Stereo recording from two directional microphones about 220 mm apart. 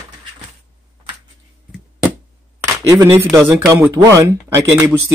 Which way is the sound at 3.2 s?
10° right (ahead or behind).